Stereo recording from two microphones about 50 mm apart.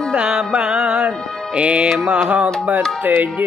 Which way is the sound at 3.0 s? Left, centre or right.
Right.